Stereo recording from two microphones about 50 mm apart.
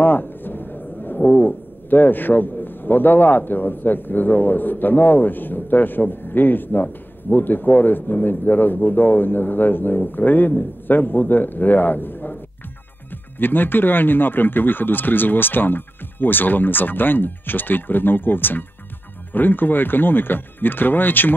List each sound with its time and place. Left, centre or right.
0.0 s a man's voice: left
13.4 s speech: left